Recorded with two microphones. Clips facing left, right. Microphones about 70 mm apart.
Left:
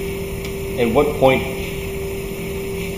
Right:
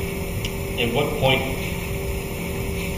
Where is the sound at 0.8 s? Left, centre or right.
Left.